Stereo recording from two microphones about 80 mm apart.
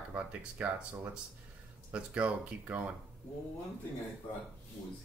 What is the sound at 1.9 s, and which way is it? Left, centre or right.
Speech, centre.